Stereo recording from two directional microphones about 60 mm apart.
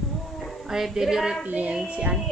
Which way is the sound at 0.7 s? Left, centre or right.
Centre.